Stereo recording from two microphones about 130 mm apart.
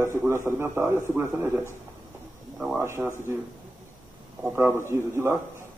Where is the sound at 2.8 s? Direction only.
20° right (ahead or behind).